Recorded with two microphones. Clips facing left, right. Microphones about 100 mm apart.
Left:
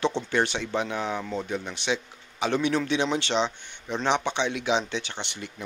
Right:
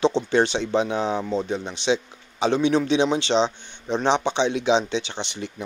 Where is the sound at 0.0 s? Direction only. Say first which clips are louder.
Right 5 dB; 25° right (ahead or behind).